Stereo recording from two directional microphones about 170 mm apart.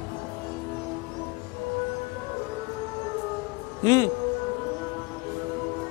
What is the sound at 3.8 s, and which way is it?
Music, 20° left (ahead or behind).